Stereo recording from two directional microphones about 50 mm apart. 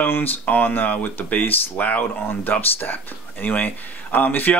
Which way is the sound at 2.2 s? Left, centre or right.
Left.